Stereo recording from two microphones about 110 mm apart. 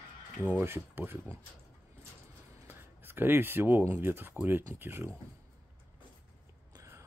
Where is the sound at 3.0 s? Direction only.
20° right (ahead or behind).